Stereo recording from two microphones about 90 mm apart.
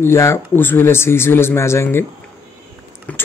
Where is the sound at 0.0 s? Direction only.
30° left (ahead or behind).